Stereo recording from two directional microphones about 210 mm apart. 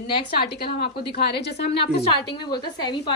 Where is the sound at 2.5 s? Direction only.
20° left (ahead or behind).